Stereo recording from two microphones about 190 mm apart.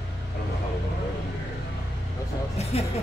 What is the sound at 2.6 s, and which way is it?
Music, 35° left (ahead or behind).